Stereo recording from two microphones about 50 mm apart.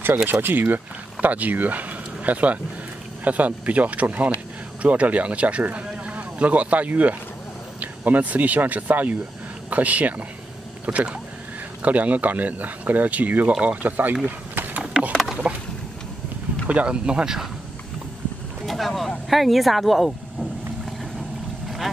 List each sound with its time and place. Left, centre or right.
0.0 s speech: right
14.5 s a sound: right
15.4 s a sound: centre
16.6 s speech: right
18.7 s speech: centre
21.6 s boat: centre